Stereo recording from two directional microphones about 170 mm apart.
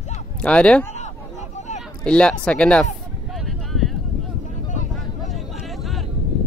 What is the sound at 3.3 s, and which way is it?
Clip-clop, centre (ahead or behind).